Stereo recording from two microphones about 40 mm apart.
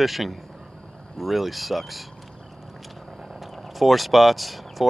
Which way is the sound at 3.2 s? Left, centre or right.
Centre.